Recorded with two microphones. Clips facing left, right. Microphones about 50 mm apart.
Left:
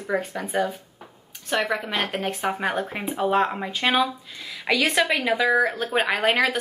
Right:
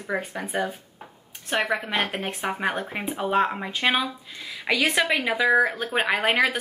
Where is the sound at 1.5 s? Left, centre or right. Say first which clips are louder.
Even; centre.